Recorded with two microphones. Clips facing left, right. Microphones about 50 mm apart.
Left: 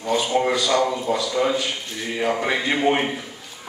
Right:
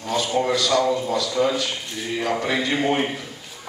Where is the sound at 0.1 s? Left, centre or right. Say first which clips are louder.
Left 1 dB; left.